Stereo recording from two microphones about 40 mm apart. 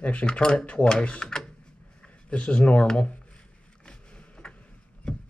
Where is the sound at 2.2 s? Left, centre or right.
Left.